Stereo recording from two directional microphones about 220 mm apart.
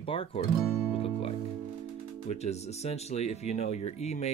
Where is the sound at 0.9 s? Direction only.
25° left (ahead or behind).